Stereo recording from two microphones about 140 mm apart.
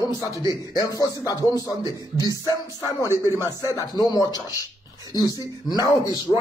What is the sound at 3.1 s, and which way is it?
Speech, 20° right (ahead or behind).